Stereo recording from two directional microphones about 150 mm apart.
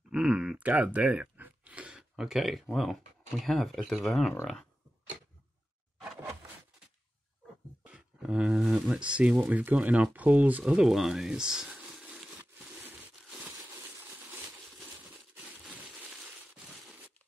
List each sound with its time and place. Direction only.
0.1 s speech: 5° right (ahead or behind)
7.8 s speech: 5° right (ahead or behind)
13.9 s a sound: 15° right (ahead or behind)
15.3 s crushing: 10° right (ahead or behind)